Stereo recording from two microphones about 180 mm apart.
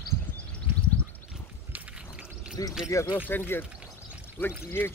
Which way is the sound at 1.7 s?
5° right (ahead or behind).